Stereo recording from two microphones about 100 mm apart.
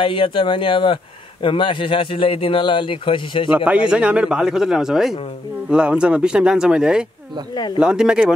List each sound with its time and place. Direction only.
0.0 s speech: 60° left (ahead or behind)
3.5 s speech: 10° right (ahead or behind)
7.5 s speech: 45° left (ahead or behind)
7.8 s speech: 10° right (ahead or behind)